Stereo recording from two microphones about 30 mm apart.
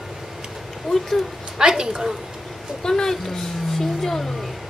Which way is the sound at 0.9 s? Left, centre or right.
Centre.